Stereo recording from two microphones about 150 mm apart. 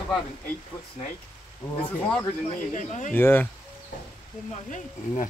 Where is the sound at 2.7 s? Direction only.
55° left (ahead or behind).